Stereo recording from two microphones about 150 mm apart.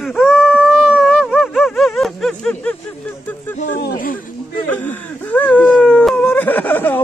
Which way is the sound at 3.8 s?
70° left (ahead or behind).